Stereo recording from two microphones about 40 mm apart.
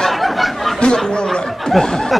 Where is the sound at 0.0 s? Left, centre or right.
Centre.